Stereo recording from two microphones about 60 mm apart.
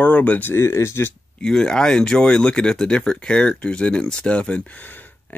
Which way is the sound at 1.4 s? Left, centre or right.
Centre.